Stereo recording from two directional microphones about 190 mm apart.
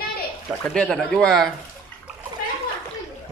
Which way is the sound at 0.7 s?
5° left (ahead or behind).